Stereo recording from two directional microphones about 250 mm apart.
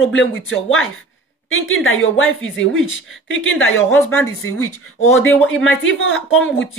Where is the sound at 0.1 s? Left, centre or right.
Left.